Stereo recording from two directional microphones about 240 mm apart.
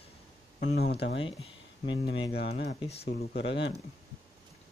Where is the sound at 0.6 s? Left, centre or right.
Left.